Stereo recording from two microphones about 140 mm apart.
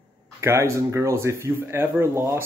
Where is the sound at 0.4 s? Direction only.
20° right (ahead or behind).